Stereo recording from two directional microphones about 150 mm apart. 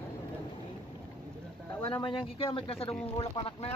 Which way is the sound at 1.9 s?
35° left (ahead or behind).